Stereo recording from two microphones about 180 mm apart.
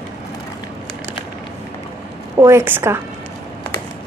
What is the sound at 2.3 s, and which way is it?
Speech, 15° right (ahead or behind).